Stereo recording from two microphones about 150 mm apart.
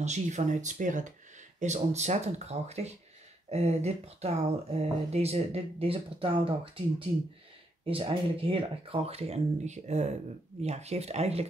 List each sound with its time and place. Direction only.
0.0 s speech: 50° right (ahead or behind)